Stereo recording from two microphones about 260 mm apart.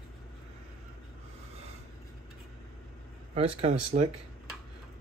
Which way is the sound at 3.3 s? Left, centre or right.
Right.